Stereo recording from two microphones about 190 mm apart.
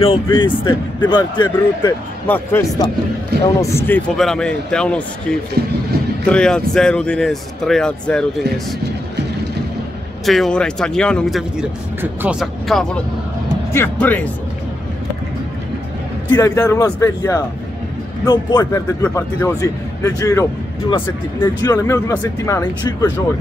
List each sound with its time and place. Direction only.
0.0 s speech: 25° left (ahead or behind)
2.2 s speech: 10° left (ahead or behind)
10.2 s speech: centre (ahead or behind)
12.0 s speech: 10° right (ahead or behind); by 14.3 s 10° left (ahead or behind)
16.3 s speech: 15° left (ahead or behind)